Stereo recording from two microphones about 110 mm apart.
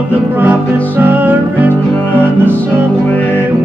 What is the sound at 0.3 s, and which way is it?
Music, 15° right (ahead or behind).